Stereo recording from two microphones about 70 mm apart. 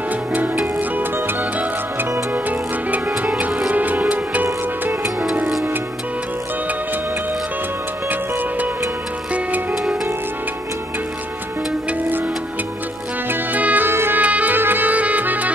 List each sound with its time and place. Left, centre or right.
0.1 s music: right
2.0 s music: right
2.3 s music: right
8.1 s music: right
13.3 s music: right
14.2 s music: right